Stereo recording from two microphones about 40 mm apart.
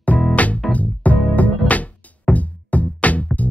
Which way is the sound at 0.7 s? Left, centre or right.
Left.